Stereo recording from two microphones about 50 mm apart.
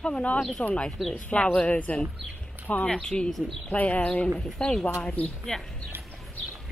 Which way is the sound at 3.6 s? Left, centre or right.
Left.